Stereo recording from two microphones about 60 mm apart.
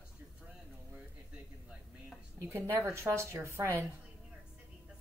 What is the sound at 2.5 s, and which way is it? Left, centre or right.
A woman's voice, right.